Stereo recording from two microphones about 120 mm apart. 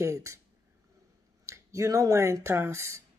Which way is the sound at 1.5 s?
25° right (ahead or behind).